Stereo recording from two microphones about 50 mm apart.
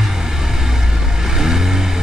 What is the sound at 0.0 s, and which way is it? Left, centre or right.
Vehicle, centre.